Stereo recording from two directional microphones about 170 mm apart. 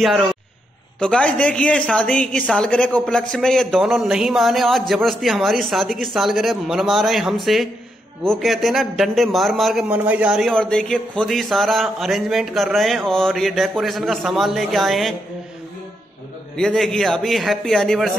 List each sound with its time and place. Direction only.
0.9 s a man's voice: 5° left (ahead or behind)
16.5 s a man's voice: centre (ahead or behind)